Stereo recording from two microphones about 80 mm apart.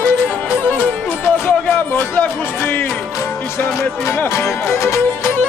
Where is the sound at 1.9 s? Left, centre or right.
Left.